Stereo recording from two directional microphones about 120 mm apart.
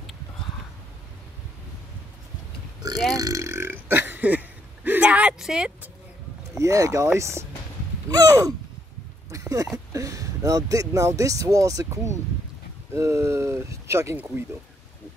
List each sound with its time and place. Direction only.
3.2 s burping: 30° right (ahead or behind); by 5.9 s 5° right (ahead or behind)
6.6 s speech: 25° right (ahead or behind)
8.1 s gasp: 35° right (ahead or behind)
9.3 s a sound: 25° right (ahead or behind)
9.9 s speech: 25° right (ahead or behind)